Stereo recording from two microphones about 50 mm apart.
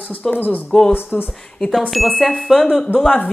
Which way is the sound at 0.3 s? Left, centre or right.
Left.